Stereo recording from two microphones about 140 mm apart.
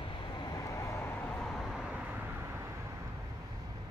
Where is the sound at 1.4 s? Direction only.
Centre (ahead or behind).